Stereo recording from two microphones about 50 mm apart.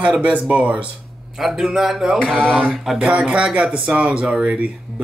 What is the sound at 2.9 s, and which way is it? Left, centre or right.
Speech, right.